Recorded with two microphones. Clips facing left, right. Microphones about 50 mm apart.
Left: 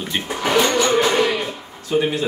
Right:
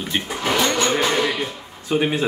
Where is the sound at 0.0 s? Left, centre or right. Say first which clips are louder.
Even; centre.